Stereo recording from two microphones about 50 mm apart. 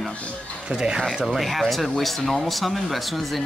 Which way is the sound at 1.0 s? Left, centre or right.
Centre.